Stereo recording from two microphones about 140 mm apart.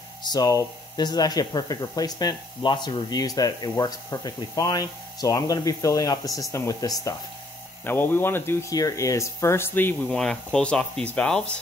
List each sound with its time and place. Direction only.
0.2 s speech: 30° left (ahead or behind)
7.8 s speech: 15° left (ahead or behind)